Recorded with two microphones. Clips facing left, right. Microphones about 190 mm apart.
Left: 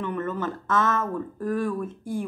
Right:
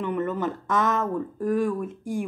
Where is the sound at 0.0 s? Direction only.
15° right (ahead or behind).